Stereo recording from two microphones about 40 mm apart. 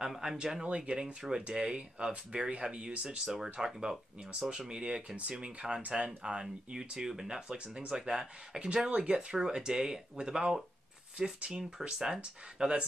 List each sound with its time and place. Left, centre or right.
0.0 s speech: centre
0.7 s speech: right
3.6 s speech: centre
4.5 s speech: right
7.9 s speech: centre
8.5 s speech: right